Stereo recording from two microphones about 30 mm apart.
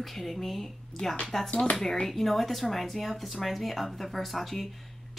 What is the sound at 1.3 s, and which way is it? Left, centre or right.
Speech, centre.